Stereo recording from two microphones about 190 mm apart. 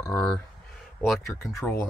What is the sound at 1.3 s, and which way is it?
Speech, 15° left (ahead or behind).